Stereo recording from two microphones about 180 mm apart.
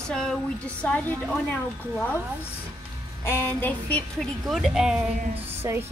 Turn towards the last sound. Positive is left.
turn(degrees=-15)  # may be behind; listen again after turning